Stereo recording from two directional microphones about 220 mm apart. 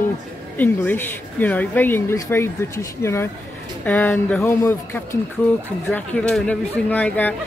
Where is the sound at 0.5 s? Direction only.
10° left (ahead or behind).